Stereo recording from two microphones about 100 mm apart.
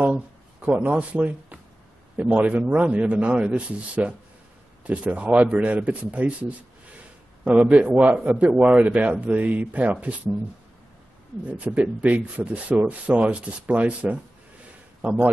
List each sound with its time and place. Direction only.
0.0 s music: 15° right (ahead or behind)
2.1 s speech: 15° right (ahead or behind)
7.4 s speech: 15° right (ahead or behind)
11.4 s a man's voice: 15° right (ahead or behind)